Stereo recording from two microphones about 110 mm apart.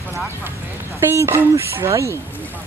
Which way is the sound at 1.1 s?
25° right (ahead or behind).